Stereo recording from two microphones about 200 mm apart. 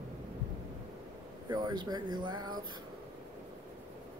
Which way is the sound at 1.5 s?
20° right (ahead or behind).